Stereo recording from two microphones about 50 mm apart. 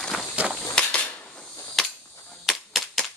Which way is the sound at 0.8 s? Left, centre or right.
Centre.